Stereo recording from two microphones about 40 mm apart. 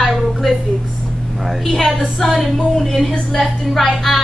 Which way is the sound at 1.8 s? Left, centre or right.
Centre.